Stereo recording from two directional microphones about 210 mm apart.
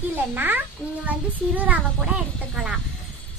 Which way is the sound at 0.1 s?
10° right (ahead or behind).